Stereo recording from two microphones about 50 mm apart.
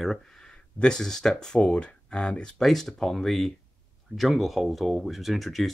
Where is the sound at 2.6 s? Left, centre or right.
Centre.